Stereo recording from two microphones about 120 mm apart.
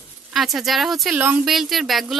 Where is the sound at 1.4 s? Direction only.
Centre (ahead or behind).